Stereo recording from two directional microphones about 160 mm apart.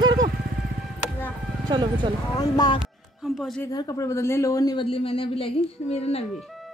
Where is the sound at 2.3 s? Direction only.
25° left (ahead or behind).